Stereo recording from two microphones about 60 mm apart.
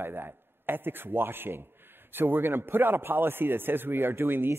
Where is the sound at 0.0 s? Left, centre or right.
Right.